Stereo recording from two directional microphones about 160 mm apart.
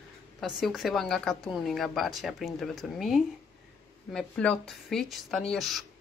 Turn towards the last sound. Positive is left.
turn(degrees=0)  # may be behind; listen again after turning